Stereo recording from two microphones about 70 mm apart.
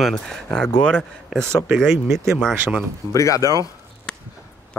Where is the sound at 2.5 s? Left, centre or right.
Right.